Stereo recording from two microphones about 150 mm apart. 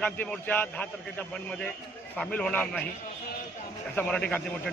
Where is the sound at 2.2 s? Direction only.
5° left (ahead or behind).